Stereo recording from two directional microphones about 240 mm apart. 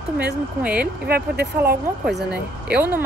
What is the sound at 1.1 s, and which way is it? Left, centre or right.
Speech, right.